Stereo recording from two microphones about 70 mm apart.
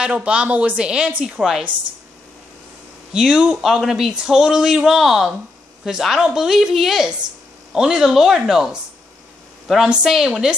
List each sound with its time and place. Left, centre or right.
0.0 s speech: centre
3.1 s a woman's voice: centre
9.8 s speech: centre